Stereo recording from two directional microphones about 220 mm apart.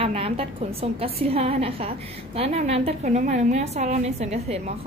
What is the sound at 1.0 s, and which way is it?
A woman's voice, 25° right (ahead or behind).